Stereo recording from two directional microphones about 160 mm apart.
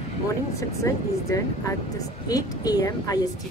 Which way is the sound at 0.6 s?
20° left (ahead or behind).